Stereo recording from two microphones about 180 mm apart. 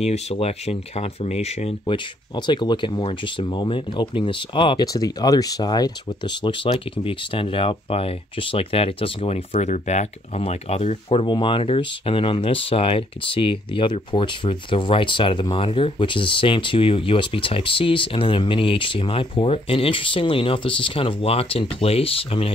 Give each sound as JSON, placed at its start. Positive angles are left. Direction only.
{"t": 0.0, "sound": "speech", "side_deg": 35}